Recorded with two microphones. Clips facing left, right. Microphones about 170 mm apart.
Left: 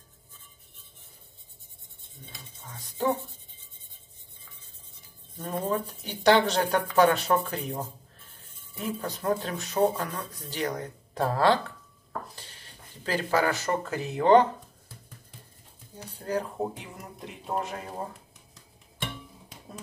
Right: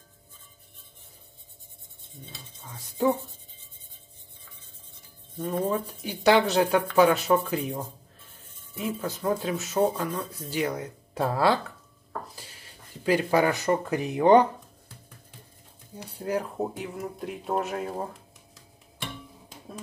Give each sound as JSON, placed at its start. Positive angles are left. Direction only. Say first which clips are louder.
{"t": 2.7, "sound": "speech", "louder": "right 3 dB", "side_deg": -10}
{"t": 5.6, "sound": "speech", "louder": "even", "side_deg": -10}
{"t": 13.0, "sound": "speech", "louder": "right 4 dB", "side_deg": -15}
{"t": 16.1, "sound": "speech", "louder": "right 1 dB", "side_deg": -10}